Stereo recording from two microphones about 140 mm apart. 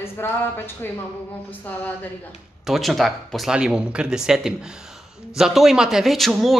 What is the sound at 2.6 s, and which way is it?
Speech, centre (ahead or behind).